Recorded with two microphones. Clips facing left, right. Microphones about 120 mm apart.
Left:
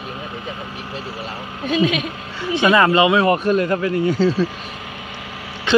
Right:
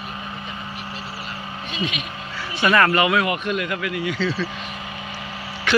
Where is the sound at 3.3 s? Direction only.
35° left (ahead or behind).